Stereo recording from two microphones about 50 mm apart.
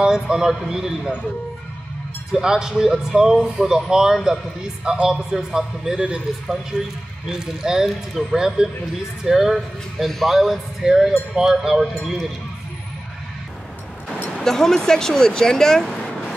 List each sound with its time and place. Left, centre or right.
0.0 s a man's voice: centre
2.3 s a man's voice: centre
7.2 s a man's voice: centre
14.3 s speech: centre